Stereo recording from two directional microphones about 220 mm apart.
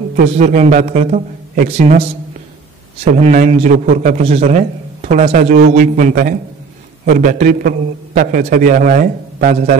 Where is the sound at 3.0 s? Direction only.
30° right (ahead or behind).